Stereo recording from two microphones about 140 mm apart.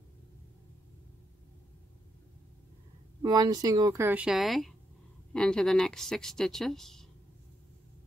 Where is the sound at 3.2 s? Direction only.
30° right (ahead or behind).